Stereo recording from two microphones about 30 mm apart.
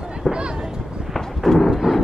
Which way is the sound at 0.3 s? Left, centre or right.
Right.